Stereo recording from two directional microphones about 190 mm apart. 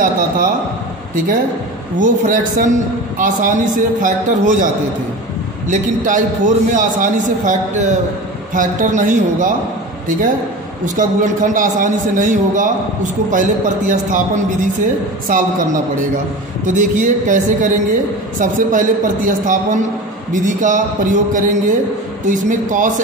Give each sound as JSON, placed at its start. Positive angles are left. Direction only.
{"t": 2.0, "sound": "a man's voice", "side_deg": -45}
{"t": 5.7, "sound": "a man's voice", "side_deg": -45}